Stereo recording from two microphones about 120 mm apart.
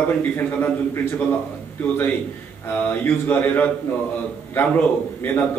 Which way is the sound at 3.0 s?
15° left (ahead or behind).